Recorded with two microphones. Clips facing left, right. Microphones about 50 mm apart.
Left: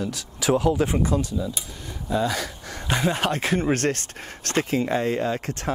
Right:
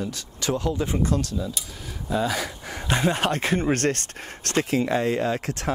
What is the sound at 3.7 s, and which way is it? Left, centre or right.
Speech, right.